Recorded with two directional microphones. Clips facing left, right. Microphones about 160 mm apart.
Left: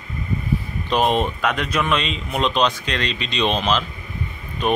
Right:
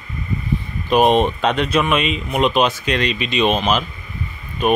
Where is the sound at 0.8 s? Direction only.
15° right (ahead or behind).